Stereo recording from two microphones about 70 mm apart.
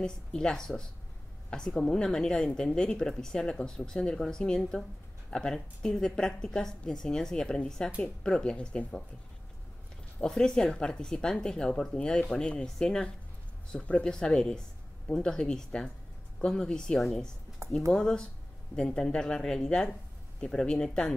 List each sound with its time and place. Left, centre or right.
0.0 s speech: centre
10.2 s speech: centre
17.6 s speech: right
17.9 s speech: centre